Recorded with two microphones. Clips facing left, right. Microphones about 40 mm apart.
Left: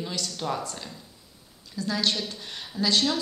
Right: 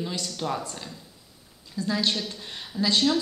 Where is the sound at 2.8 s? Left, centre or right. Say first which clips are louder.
Right 1 dB; right.